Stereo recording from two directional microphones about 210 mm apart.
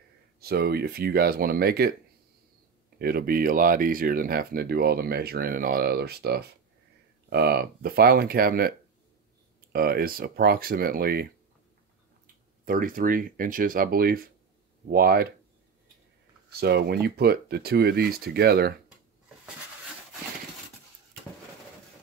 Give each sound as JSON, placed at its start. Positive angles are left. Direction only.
{"t": 0.4, "sound": "speech", "side_deg": -50}
{"t": 3.0, "sound": "speech", "side_deg": -45}
{"t": 12.6, "sound": "speech", "side_deg": -40}
{"t": 16.5, "sound": "speech", "side_deg": -50}